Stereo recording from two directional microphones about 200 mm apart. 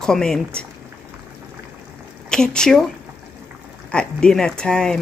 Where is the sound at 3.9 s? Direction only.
5° left (ahead or behind).